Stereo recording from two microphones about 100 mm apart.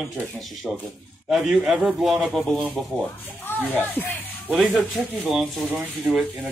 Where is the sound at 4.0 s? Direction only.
20° left (ahead or behind).